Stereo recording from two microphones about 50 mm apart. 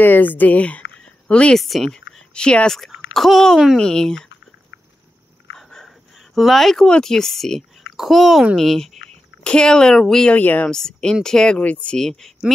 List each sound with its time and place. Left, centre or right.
0.0 s speech: left
0.6 s speech: left
1.2 s a sound: left
1.6 s speech: centre
1.9 s speech: centre
3.1 s speech: centre
3.7 s speech: centre
5.5 s a sound: centre
6.3 s a child's voice: centre
10.3 s speech: left
10.7 s speech: centre